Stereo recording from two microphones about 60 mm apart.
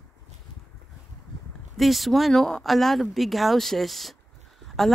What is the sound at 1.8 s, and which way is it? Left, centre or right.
Speech, centre.